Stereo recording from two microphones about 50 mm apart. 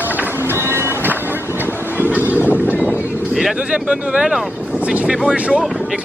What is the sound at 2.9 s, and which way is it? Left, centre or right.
Boat, right.